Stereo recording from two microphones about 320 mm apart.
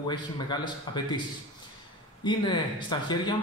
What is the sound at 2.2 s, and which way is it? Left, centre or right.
A man's voice, centre.